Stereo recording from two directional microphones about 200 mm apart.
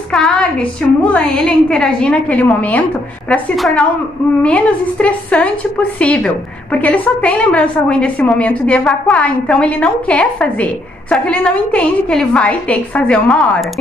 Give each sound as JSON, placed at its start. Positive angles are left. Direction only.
{"t": 0.1, "sound": "a woman's voice", "side_deg": 5}